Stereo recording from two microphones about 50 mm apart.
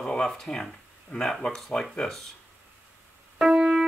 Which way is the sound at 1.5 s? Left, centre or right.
Centre.